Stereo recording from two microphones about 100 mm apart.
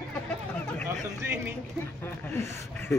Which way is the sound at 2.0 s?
25° left (ahead or behind).